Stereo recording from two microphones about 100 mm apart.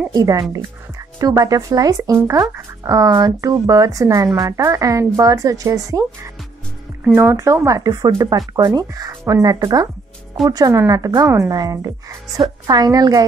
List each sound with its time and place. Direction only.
0.1 s speech: 40° right (ahead or behind)
7.2 s speech: 25° right (ahead or behind)